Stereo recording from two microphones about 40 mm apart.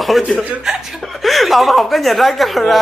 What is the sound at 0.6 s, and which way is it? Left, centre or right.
Speech, centre.